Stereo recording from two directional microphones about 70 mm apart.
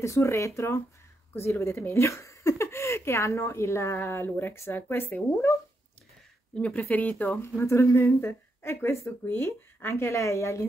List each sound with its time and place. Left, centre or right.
0.0 s speech: left
6.5 s speech: centre
7.6 s speech: left